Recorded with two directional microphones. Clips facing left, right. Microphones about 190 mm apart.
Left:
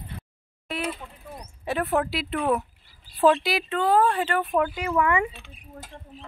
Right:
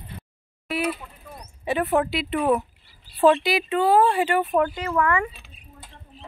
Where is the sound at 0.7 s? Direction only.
10° right (ahead or behind).